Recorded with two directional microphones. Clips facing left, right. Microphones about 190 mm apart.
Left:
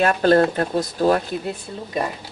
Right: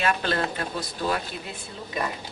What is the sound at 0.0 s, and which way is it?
Speech, 45° left (ahead or behind).